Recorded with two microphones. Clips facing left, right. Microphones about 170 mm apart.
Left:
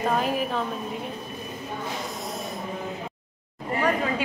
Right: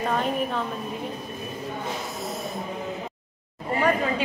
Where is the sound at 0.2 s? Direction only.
Centre (ahead or behind).